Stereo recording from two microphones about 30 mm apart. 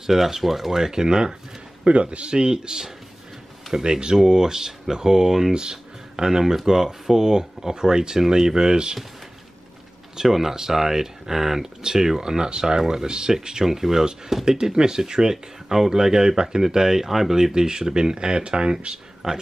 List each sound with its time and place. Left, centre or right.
0.0 s speech: centre
1.9 s speech: right; by 5.5 s centre
5.5 s speech: right
10.1 s speech: centre
13.7 s speech: centre
14.4 s speech: right